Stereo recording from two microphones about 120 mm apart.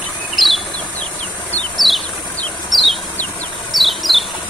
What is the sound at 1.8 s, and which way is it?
Bird, 40° left (ahead or behind).